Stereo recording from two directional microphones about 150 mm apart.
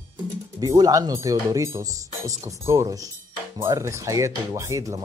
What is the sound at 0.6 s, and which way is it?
Speech, 25° right (ahead or behind).